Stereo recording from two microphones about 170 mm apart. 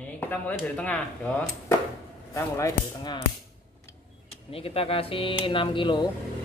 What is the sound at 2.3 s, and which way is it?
Speech, 20° left (ahead or behind).